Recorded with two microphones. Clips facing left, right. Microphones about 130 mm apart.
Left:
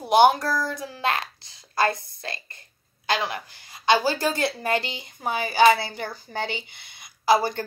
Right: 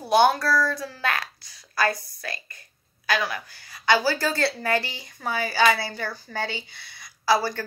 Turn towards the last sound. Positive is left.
turn(degrees=20)  # may be behind; listen again after turning